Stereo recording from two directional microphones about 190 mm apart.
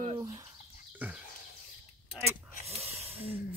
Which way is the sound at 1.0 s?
10° right (ahead or behind).